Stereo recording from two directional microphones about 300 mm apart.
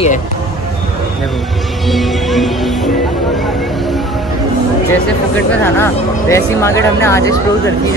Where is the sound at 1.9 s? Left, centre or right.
Centre.